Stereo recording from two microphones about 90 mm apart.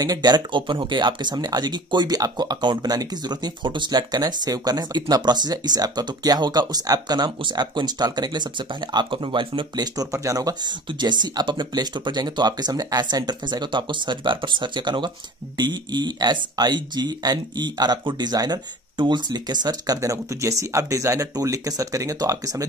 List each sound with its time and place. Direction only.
0.0 s speech: 50° right (ahead or behind); by 9.8 s 65° right (ahead or behind)
9.9 s speech: 40° right (ahead or behind)
10.9 s speech: 55° right (ahead or behind)